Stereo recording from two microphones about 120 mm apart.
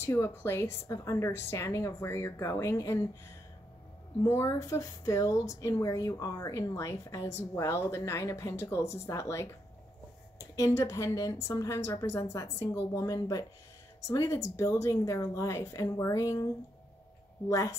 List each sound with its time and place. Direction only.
0.0 s speech: 20° left (ahead or behind)
4.3 s speech: 25° left (ahead or behind)
10.5 s speech: 25° left (ahead or behind)
17.5 s speech: 25° left (ahead or behind)